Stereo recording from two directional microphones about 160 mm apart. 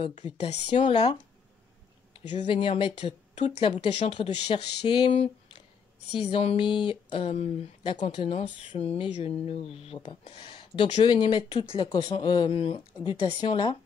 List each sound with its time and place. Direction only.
0.4 s speech: 45° left (ahead or behind)
2.3 s speech: 35° left (ahead or behind)
4.8 s a sound: 30° left (ahead or behind)
6.3 s speech: 35° left (ahead or behind)